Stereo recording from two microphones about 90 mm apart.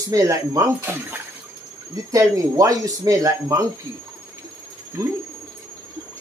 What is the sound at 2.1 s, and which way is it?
Speech, 35° right (ahead or behind).